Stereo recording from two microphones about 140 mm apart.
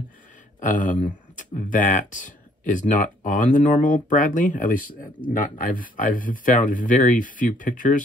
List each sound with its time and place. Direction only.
0.6 s speech: 70° left (ahead or behind)